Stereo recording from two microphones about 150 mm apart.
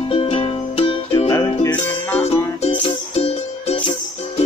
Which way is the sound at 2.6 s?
40° left (ahead or behind).